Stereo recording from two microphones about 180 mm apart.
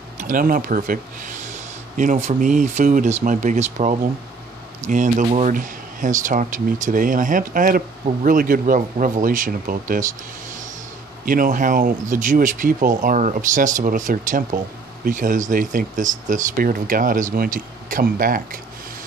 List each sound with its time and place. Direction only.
0.2 s speech: 50° right (ahead or behind)